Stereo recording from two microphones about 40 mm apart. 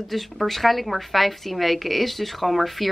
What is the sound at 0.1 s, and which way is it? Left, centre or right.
Speech, centre.